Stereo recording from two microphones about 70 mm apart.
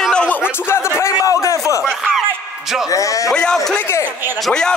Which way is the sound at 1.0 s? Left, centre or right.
Left.